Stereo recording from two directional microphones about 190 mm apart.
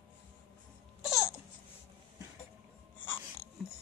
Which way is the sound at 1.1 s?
15° left (ahead or behind).